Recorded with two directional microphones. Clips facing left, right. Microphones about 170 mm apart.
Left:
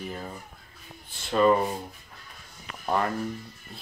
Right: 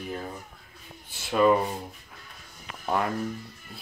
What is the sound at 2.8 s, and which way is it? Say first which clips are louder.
Speech: left 1 dB; centre (ahead or behind).